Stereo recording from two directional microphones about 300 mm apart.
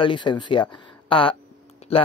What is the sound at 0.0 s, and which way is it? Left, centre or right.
Speech, centre.